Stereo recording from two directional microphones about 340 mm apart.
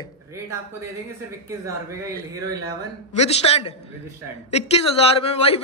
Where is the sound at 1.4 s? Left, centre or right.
Centre.